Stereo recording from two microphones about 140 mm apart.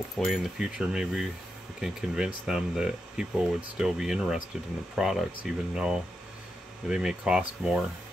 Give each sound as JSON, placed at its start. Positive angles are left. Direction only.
{"t": 0.2, "sound": "speech", "side_deg": 0}